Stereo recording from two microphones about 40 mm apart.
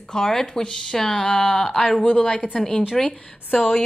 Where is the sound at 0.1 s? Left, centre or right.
Centre.